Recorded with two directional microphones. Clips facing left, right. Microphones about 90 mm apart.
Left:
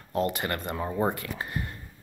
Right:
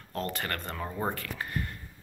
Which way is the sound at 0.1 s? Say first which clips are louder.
Left 6 dB; 15° left (ahead or behind).